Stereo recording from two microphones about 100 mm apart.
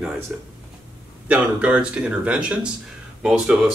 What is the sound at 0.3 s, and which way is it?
Speech, 5° right (ahead or behind).